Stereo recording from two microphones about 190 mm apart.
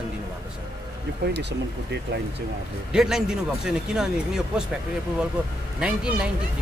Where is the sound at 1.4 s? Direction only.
65° right (ahead or behind).